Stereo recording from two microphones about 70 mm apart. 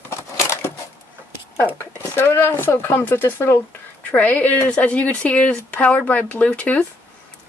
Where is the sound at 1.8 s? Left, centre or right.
Left.